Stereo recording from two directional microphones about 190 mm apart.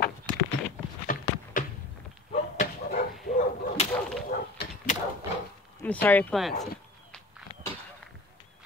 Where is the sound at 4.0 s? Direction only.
Centre (ahead or behind).